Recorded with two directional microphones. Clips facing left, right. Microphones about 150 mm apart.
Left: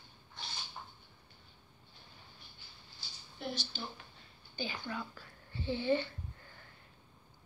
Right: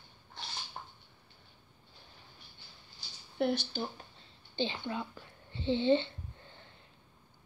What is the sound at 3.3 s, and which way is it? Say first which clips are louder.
Speech: right 10 dB; 60° right (ahead or behind).